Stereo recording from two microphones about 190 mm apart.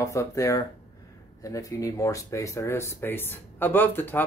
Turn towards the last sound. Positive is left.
turn(degrees=10)  # may be behind; listen again after turning